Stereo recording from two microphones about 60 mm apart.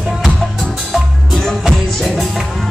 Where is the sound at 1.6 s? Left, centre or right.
Centre.